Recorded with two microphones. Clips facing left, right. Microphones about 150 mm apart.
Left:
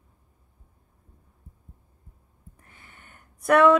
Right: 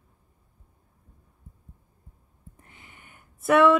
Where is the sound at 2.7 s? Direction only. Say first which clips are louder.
Left 1 dB; 15° right (ahead or behind).